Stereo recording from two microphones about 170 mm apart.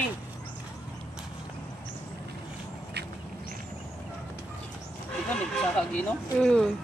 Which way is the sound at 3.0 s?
75° right (ahead or behind).